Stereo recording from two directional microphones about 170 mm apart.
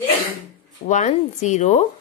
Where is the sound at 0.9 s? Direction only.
45° left (ahead or behind).